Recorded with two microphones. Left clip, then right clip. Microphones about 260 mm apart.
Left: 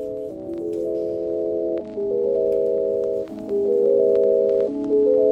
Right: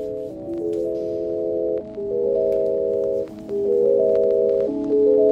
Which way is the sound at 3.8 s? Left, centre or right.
Centre.